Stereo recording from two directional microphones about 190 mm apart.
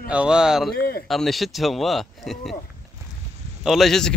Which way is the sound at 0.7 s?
55° left (ahead or behind).